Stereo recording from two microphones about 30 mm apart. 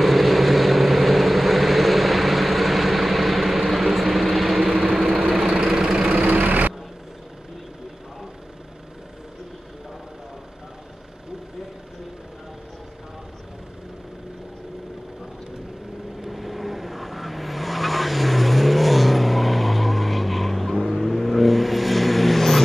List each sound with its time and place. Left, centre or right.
0.0 s vehicle: centre
5.7 s engine: centre
6.2 s vehicle: right
16.2 s vehicle: centre